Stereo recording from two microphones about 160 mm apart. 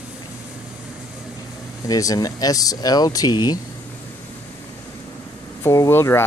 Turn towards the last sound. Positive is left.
turn(degrees=15)  # may be behind; listen again after turning